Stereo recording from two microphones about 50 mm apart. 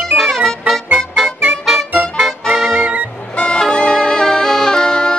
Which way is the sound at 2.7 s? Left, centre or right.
Right.